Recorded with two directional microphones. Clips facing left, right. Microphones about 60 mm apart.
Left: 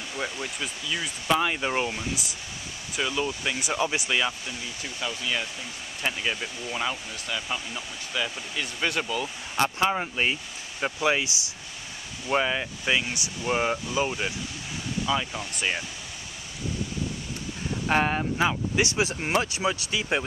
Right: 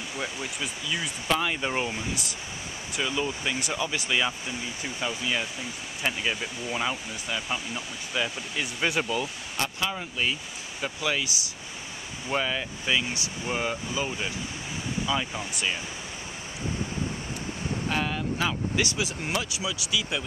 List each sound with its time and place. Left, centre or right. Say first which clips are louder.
0.2 s speech: left 2 dB; centre
3.7 s speech: left 7 dB; centre
4.1 s speech: even; centre
4.5 s speech: right 2 dB; centre
9.6 s speech: left 6 dB; left
12.3 s speech: left 3 dB; centre
15.1 s speech: left 2 dB; centre
17.8 s speech: left 6 dB; left
18.4 s speech: left 3 dB; left
18.9 s speech: left 4 dB; left